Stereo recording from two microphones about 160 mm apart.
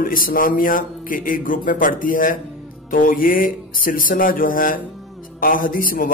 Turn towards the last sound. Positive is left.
turn(degrees=60)  # may be behind; listen again after turning